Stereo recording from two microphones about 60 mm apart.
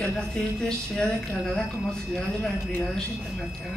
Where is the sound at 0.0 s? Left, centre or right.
Centre.